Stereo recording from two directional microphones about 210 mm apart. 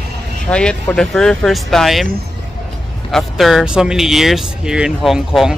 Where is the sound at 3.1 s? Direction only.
Centre (ahead or behind).